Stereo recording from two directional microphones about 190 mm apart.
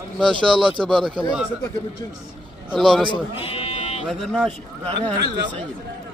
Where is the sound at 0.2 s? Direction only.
25° right (ahead or behind).